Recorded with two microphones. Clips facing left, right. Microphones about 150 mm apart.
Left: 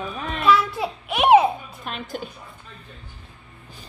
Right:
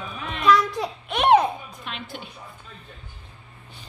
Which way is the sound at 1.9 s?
45° left (ahead or behind).